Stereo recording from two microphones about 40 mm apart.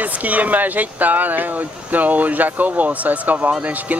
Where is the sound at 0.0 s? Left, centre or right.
Right.